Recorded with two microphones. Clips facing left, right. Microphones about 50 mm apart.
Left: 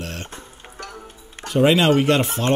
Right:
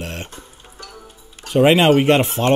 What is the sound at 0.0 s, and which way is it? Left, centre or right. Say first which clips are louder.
Music: right 2 dB; right.